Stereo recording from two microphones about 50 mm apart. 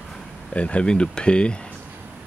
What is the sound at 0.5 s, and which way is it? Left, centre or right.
Speech, left.